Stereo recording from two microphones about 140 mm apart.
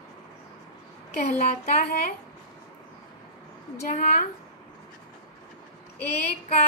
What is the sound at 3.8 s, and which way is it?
Child singing, 65° left (ahead or behind).